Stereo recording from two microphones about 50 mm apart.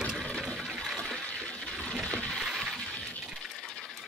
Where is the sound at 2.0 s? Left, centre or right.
Left.